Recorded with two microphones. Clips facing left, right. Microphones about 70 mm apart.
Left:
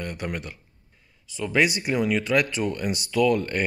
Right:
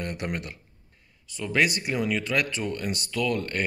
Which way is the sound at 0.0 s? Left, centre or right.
Centre.